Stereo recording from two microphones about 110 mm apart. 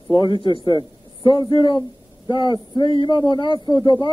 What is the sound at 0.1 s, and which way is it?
Speech, 45° left (ahead or behind).